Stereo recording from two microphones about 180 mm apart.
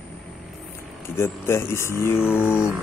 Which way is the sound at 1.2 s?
15° left (ahead or behind).